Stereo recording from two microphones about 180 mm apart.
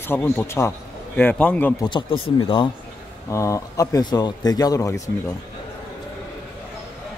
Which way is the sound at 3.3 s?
15° left (ahead or behind).